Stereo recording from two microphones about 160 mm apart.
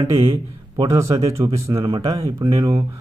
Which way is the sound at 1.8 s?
35° right (ahead or behind).